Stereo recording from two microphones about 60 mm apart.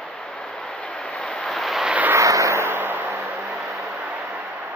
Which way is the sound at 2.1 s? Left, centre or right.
Right.